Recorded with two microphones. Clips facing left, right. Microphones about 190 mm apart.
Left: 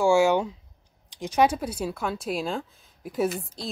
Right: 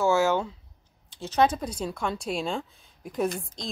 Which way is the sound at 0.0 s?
15° left (ahead or behind).